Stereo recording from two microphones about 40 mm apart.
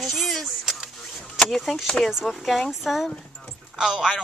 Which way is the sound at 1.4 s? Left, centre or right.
Centre.